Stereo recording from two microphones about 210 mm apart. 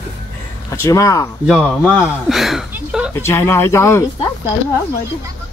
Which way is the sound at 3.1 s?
10° left (ahead or behind).